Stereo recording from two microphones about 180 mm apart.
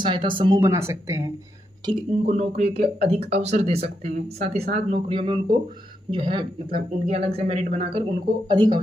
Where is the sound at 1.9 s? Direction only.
35° right (ahead or behind).